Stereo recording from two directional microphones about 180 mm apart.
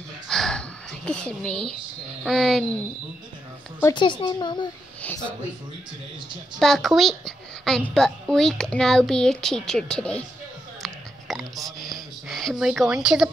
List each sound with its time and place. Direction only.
0.3 s a sound: 5° left (ahead or behind)
2.2 s a woman's voice: centre (ahead or behind)
3.8 s a woman's voice: 25° left (ahead or behind)
6.6 s a woman's voice: centre (ahead or behind)